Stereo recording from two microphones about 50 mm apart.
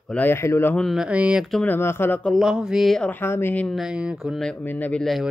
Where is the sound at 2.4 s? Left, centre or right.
Centre.